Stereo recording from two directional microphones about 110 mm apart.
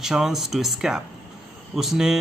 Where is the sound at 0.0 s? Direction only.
5° right (ahead or behind).